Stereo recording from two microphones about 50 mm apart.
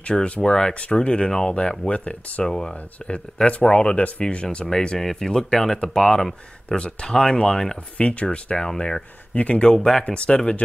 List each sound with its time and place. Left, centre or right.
0.0 s speech: left
2.4 s speech: centre
4.6 s speech: centre
8.0 s speech: left
9.8 s speech: centre
10.0 s speech: left